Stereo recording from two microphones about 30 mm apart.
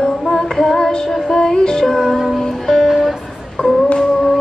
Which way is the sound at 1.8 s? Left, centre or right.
Centre.